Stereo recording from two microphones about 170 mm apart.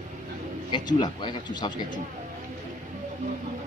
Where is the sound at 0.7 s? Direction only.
25° left (ahead or behind).